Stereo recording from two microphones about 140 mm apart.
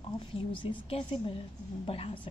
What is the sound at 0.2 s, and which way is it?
A woman's voice, 40° left (ahead or behind).